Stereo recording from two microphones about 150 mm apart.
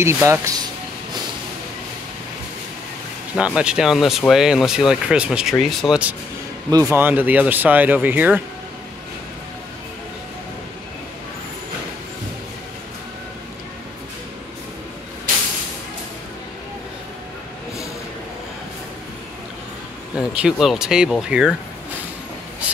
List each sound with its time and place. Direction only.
0.0 s speech: 20° right (ahead or behind)
3.3 s speech: 5° right (ahead or behind)
6.7 s speech: 20° right (ahead or behind)
20.2 s speech: 5° right (ahead or behind)